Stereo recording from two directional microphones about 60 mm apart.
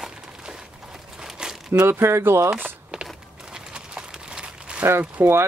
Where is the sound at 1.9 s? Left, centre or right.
Right.